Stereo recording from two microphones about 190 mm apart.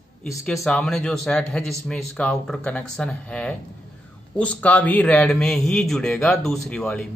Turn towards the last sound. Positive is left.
turn(degrees=5)  # may be behind; listen again after turning